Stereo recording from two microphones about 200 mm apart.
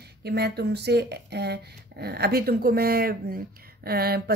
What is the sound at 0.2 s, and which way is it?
Speech, 55° right (ahead or behind).